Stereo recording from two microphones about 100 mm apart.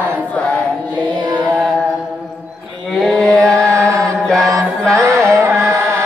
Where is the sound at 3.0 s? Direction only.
5° left (ahead or behind).